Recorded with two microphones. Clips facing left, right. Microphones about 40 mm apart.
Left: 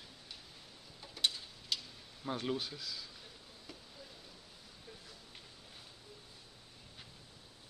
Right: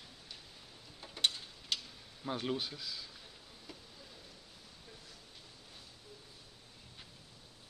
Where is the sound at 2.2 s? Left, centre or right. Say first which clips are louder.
Even; centre.